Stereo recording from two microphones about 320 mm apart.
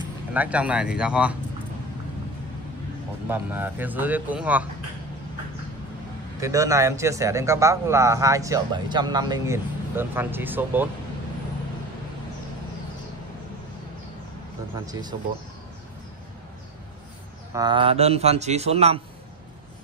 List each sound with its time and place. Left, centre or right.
0.3 s speech: centre
3.3 s speech: centre
6.4 s a man's voice: centre
14.9 s a man's voice: centre
17.6 s a man's voice: centre